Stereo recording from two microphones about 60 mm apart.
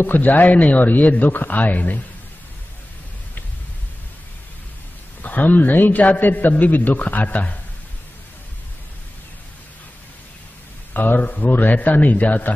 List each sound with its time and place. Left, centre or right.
0.0 s a man's voice: left
5.2 s a man's voice: left
10.9 s a man's voice: left